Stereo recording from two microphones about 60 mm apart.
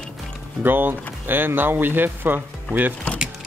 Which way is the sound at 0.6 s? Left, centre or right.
Right.